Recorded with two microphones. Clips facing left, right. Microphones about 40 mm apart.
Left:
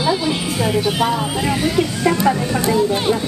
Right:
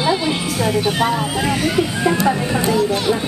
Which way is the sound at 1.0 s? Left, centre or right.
Centre.